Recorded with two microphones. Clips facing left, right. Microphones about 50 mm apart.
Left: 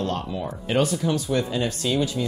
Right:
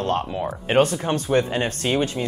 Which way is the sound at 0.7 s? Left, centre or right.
Right.